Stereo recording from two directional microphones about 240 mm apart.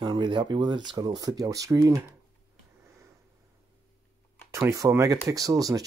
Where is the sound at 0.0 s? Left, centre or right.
Centre.